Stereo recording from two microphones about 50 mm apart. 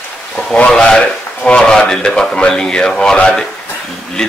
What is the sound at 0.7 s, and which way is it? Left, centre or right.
Speech, centre.